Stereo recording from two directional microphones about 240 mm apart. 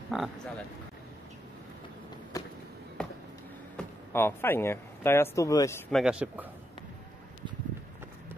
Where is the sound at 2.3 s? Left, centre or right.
Centre.